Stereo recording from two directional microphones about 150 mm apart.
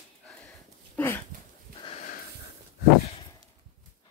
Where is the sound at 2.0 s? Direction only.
65° left (ahead or behind).